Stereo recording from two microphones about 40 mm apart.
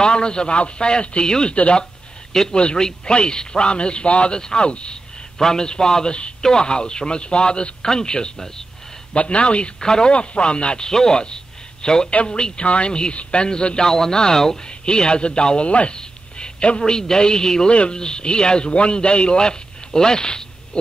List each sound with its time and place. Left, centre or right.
0.0 s speech: left
1.5 s a man's voice: left
9.1 s speech: left
9.8 s a man's voice: centre